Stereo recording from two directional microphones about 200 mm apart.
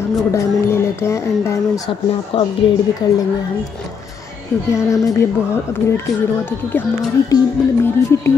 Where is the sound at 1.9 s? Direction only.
25° left (ahead or behind).